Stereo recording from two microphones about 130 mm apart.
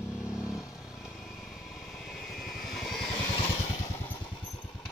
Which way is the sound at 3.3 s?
50° left (ahead or behind).